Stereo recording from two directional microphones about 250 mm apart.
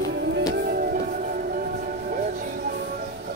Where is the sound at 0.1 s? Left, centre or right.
Right.